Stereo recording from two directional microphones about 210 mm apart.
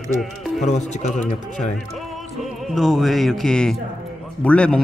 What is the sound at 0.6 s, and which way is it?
Speech, 35° left (ahead or behind).